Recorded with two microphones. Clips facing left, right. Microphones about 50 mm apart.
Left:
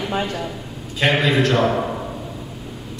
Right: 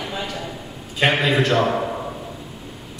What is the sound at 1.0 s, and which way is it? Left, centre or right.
Speech, centre.